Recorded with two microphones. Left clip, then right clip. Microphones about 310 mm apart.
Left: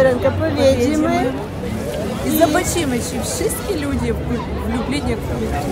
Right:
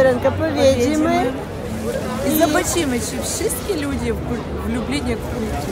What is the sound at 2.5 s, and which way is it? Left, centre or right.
Speech, centre.